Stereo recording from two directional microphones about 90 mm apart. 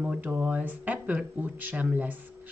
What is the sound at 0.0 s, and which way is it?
Speech, 15° right (ahead or behind).